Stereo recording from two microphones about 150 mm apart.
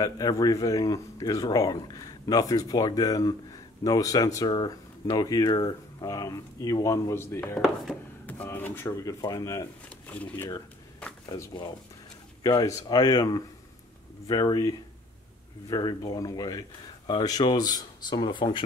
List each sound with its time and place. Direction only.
0.0 s speech: 25° left (ahead or behind)
7.5 s speech: centre (ahead or behind)
8.3 s speech: 10° left (ahead or behind)
9.8 s speech: 10° left (ahead or behind)
11.2 s speech: 25° left (ahead or behind)